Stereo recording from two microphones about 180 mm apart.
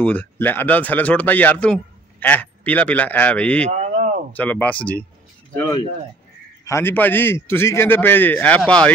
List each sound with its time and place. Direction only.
0.0 s speech: 10° left (ahead or behind)
3.8 s a sound: 40° right (ahead or behind)
4.4 s speech: 10° left (ahead or behind)
6.6 s speech: 15° left (ahead or behind)